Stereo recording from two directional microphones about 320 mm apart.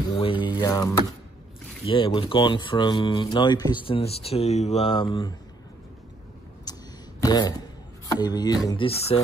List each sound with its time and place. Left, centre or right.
0.1 s speech: centre
6.6 s a sound: centre
8.2 s speech: centre